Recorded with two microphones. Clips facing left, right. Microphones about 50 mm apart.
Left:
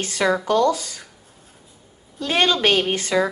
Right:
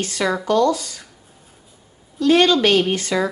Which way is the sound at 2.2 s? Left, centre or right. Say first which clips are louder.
Right 5 dB; left.